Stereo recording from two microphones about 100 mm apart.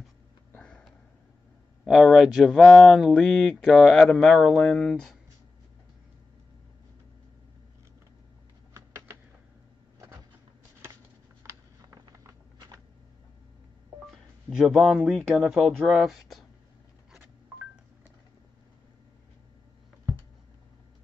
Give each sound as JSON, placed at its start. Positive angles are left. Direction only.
{"t": 0.5, "sound": "sniff", "side_deg": 10}
{"t": 1.9, "sound": "speech", "side_deg": -5}
{"t": 11.4, "sound": "a sound", "side_deg": -35}
{"t": 14.5, "sound": "speech", "side_deg": -5}